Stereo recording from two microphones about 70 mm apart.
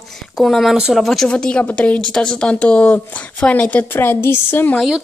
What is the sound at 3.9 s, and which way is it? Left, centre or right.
Speech, left.